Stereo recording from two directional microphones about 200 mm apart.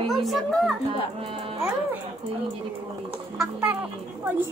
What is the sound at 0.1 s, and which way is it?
Speech, centre (ahead or behind).